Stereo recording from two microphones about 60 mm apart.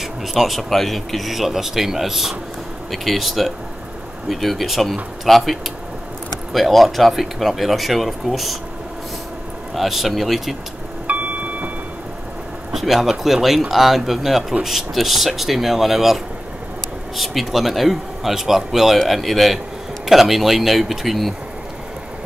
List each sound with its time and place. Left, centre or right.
0.0 s speech: centre
9.8 s speech: centre
11.1 s a sound: right
12.7 s speech: centre
17.2 s speech: centre